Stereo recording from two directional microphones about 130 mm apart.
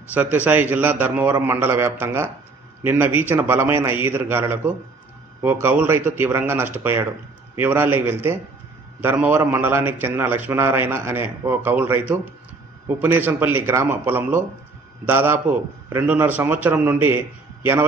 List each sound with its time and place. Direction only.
0.1 s a man's voice: 10° right (ahead or behind)